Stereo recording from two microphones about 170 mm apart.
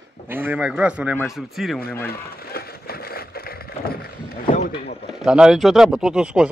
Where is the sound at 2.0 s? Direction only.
60° left (ahead or behind).